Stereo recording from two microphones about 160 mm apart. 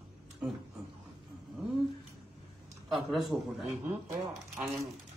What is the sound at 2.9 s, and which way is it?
Speech, centre (ahead or behind).